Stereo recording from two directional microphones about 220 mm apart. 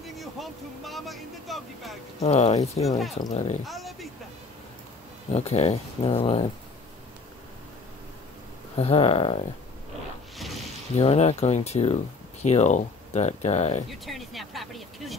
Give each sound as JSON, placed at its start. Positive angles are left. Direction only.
{"t": 0.0, "sound": "speech", "side_deg": 0}
{"t": 2.2, "sound": "speech", "side_deg": 30}
{"t": 3.6, "sound": "speech", "side_deg": 0}
{"t": 5.3, "sound": "speech", "side_deg": 30}
{"t": 8.7, "sound": "speech", "side_deg": 25}
{"t": 10.3, "sound": "a sound", "side_deg": 0}
{"t": 11.0, "sound": "speech", "side_deg": 30}
{"t": 13.8, "sound": "speech", "side_deg": 0}